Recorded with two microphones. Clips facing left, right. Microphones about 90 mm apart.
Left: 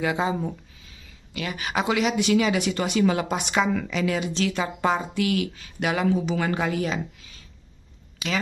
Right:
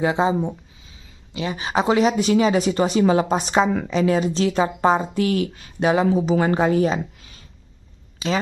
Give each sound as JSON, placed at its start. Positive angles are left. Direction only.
{"t": 0.0, "sound": "speech", "side_deg": -30}